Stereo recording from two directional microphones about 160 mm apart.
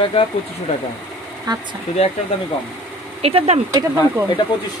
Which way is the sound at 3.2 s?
40° right (ahead or behind).